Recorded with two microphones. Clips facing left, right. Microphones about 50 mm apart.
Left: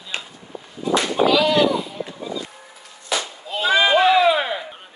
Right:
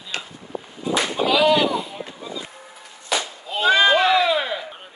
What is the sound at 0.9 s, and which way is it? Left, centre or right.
Whip, centre.